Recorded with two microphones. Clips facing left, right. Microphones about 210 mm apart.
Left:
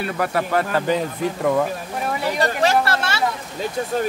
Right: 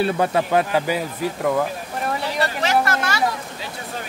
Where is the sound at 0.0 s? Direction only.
25° right (ahead or behind); by 2.1 s centre (ahead or behind).